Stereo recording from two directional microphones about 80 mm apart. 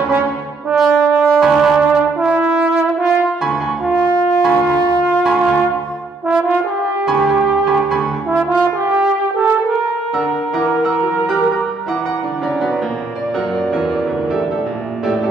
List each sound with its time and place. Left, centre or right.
0.7 s brass instrument: centre
6.2 s brass instrument: centre
7.1 s music: centre
10.7 s music: centre